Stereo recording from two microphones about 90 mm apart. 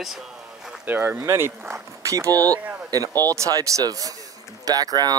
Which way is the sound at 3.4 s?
40° right (ahead or behind).